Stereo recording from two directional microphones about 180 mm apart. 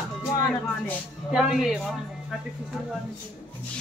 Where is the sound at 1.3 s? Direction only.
Centre (ahead or behind).